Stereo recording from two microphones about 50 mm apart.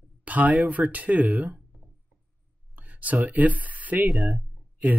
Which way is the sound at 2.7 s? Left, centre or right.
Right.